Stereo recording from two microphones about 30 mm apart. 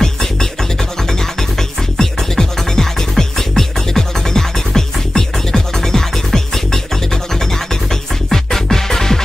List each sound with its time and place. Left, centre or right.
0.0 s music: centre
1.6 s music: centre